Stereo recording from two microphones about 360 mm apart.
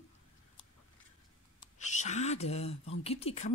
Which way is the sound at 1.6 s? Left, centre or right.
Centre.